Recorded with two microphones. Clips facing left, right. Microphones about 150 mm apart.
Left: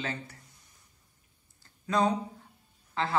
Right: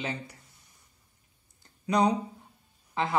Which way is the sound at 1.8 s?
20° right (ahead or behind).